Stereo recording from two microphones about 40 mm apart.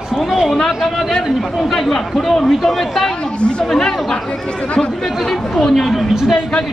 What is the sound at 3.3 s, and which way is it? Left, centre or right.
Speech, left.